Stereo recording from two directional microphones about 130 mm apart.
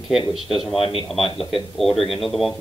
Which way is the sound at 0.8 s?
45° left (ahead or behind).